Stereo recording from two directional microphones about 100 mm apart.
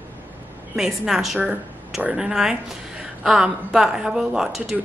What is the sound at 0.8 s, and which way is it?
A woman's voice, 5° right (ahead or behind).